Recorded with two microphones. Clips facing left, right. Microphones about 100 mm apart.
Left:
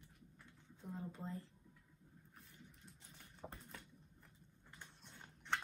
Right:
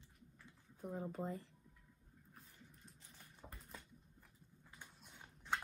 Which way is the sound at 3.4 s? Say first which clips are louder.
Left 6 dB; 25° left (ahead or behind).